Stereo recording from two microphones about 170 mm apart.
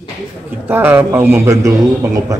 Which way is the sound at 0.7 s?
10° right (ahead or behind).